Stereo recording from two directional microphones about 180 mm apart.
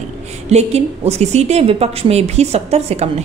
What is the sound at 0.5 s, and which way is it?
A woman's voice, 35° right (ahead or behind).